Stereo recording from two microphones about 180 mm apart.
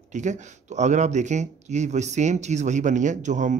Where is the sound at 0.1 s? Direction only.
40° right (ahead or behind).